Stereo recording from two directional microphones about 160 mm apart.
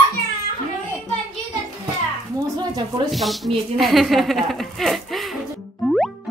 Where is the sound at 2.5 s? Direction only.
25° right (ahead or behind).